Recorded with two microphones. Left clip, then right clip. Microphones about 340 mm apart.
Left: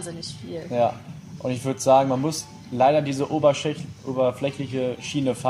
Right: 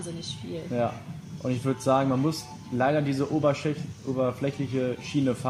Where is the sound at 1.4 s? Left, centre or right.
Left.